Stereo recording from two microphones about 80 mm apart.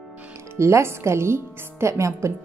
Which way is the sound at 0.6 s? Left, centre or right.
Right.